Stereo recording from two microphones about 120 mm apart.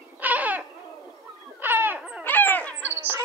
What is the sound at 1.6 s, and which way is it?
Wail, 15° right (ahead or behind).